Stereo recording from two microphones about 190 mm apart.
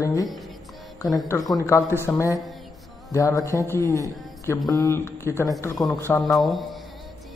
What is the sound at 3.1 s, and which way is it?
A man's voice, 15° left (ahead or behind).